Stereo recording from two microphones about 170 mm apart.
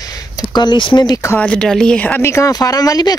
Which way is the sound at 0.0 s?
20° left (ahead or behind).